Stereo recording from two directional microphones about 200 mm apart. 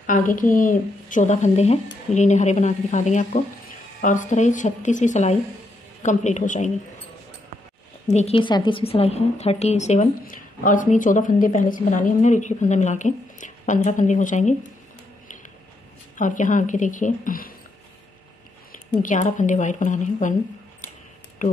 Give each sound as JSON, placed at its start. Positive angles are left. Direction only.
{"t": 0.0, "sound": "a woman's voice", "side_deg": 40}
{"t": 8.1, "sound": "a woman's voice", "side_deg": 35}
{"t": 16.2, "sound": "a woman's voice", "side_deg": 40}
{"t": 19.0, "sound": "a woman's voice", "side_deg": 40}
{"t": 21.4, "sound": "speech", "side_deg": 40}